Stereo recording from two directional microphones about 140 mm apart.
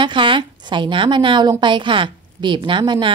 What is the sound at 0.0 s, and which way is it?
A woman's voice, 35° right (ahead or behind).